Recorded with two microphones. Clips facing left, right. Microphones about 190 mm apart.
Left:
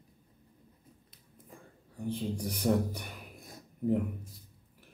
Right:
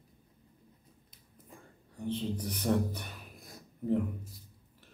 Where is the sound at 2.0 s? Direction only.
10° left (ahead or behind).